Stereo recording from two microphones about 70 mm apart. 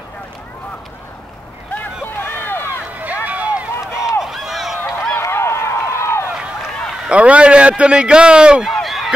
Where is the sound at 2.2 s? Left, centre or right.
Left.